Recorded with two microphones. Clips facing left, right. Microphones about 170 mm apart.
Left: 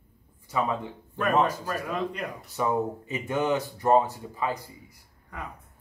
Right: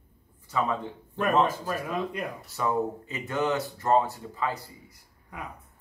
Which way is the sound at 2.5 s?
15° left (ahead or behind).